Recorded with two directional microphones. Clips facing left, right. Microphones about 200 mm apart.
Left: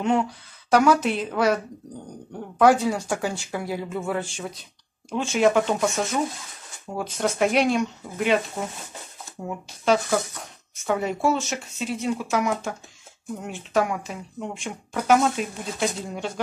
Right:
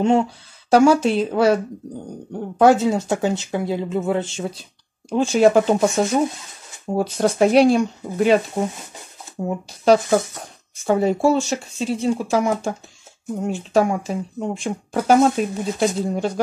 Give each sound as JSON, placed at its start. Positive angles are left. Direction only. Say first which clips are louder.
{"t": 0.0, "sound": "speech", "louder": "right 5 dB", "side_deg": -25}
{"t": 10.8, "sound": "speech", "louder": "right 7 dB", "side_deg": -30}